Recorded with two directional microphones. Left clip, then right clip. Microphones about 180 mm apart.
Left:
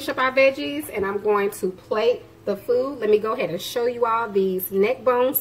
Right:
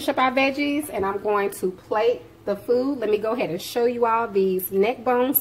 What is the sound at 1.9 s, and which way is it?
A woman's voice, 20° right (ahead or behind).